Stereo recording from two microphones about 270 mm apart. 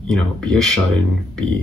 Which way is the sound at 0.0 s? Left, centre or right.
Centre.